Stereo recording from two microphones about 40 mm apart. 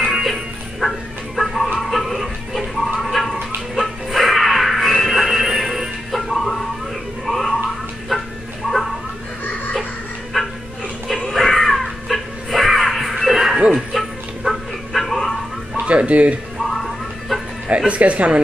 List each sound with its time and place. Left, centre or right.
0.2 s music: centre
3.0 s a sound: centre
3.7 s music: centre
8.1 s chicken: centre
10.3 s dog: centre
11.2 s caw: centre
13.7 s music: centre
15.8 s chicken: right
17.6 s speech: right